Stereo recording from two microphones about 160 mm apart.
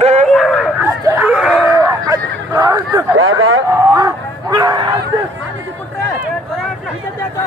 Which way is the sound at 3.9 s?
20° right (ahead or behind).